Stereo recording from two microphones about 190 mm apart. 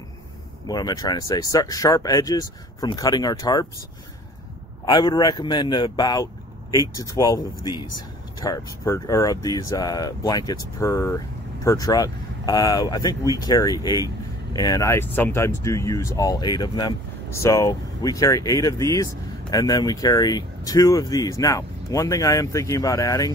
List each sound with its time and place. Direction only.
0.7 s speech: 20° left (ahead or behind)
4.8 s speech: 25° left (ahead or behind)